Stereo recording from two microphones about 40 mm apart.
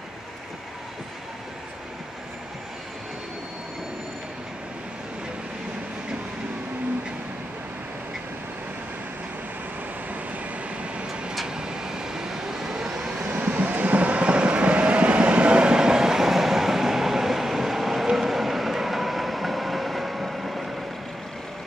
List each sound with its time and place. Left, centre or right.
11.4 s vehicle: centre
13.2 s vehicle: right; by 20.6 s centre